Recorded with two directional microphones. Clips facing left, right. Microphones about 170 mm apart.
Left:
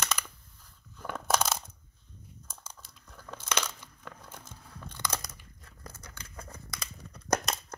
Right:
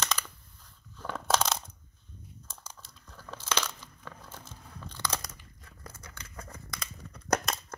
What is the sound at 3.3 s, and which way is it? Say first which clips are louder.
Crunch: right 1 dB; 15° left (ahead or behind).